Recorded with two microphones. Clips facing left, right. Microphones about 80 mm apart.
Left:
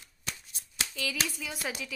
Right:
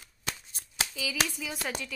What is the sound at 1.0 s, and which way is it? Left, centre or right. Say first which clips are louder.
Clapping: left 2 dB; centre.